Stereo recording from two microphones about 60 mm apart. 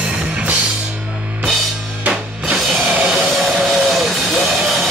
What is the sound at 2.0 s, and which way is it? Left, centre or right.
Music, centre.